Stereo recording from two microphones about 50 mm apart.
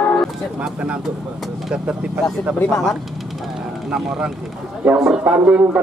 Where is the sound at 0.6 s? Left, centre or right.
Right.